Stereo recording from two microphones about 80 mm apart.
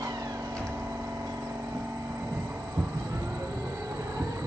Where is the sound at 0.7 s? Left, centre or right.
Right.